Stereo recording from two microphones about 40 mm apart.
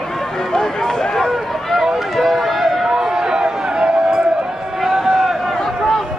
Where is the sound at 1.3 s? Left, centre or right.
Centre.